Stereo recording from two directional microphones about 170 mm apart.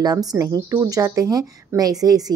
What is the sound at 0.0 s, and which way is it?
Speech, 20° right (ahead or behind).